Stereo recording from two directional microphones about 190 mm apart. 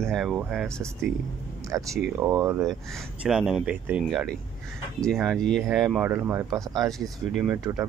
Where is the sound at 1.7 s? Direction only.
15° right (ahead or behind).